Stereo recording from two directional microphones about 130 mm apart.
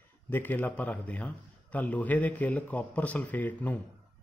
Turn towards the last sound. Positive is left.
turn(degrees=10)  # may be behind; listen again after turning